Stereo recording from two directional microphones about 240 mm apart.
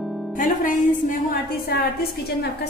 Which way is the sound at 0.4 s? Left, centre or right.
Left.